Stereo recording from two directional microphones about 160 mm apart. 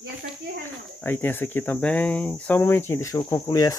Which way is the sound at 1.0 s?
15° left (ahead or behind).